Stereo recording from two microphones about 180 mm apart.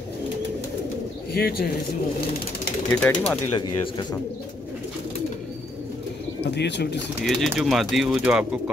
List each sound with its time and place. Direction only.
1.3 s speech: 60° left (ahead or behind)
3.0 s speech: 10° left (ahead or behind)
3.5 s speech: 25° left (ahead or behind)
6.5 s speech: 70° left (ahead or behind)
7.2 s speech: centre (ahead or behind)